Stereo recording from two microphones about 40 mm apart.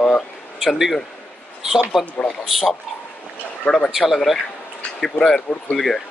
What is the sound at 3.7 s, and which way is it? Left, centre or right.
Speech, left.